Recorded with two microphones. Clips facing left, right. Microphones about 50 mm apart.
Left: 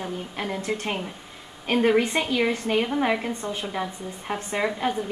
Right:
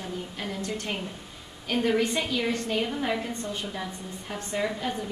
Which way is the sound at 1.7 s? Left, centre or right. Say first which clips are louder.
Left 4 dB; left.